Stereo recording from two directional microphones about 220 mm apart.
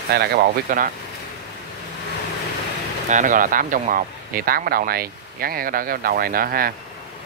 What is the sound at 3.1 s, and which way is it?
Speech, 35° right (ahead or behind).